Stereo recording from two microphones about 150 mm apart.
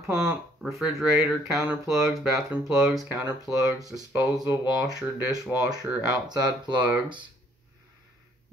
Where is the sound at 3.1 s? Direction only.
10° right (ahead or behind).